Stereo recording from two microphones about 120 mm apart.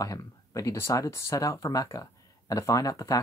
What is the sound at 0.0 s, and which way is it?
Speech, 30° left (ahead or behind).